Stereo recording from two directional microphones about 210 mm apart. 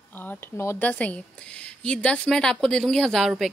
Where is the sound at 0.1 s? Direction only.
10° left (ahead or behind).